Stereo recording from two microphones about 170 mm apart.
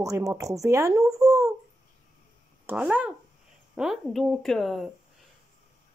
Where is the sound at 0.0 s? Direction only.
20° right (ahead or behind).